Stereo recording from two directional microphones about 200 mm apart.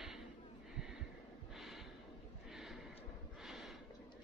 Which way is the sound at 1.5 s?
Centre (ahead or behind).